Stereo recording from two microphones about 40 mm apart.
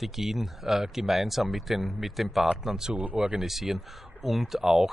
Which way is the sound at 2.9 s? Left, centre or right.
Right.